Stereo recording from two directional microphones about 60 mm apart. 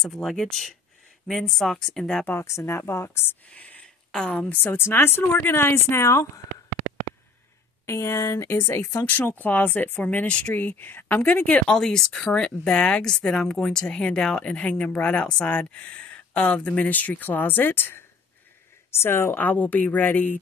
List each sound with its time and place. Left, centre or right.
0.0 s speech: centre
2.3 s speech: left
3.4 s speech: left
3.8 s a sound: centre
4.6 s speech: left
7.8 s speech: left
9.0 s speech: left
11.6 s speech: centre; by 20.3 s left